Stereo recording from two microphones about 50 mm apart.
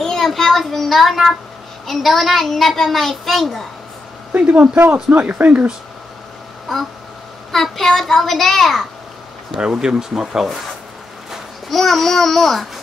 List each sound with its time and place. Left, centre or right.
0.0 s a child's voice: centre
4.3 s speech: right
6.7 s a child's voice: centre
9.5 s speech: centre
11.7 s a child's voice: centre